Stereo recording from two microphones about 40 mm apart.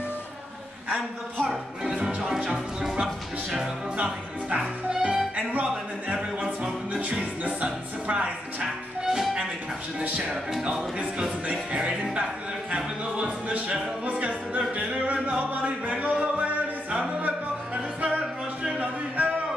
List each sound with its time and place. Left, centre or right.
0.9 s a woman's voice: centre
2.5 s music: centre
3.9 s speech: right
5.3 s music: right
9.0 s music: centre
10.0 s speech: right
11.7 s speech: right
12.7 s music: right
18.0 s music: right